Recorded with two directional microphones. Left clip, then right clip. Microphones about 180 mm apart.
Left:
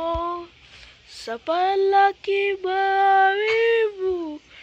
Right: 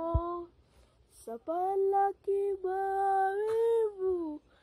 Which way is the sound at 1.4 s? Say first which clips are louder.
Left 10 dB; 10° right (ahead or behind).